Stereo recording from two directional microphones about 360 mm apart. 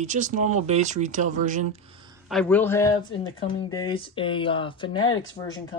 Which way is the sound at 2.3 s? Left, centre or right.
Centre.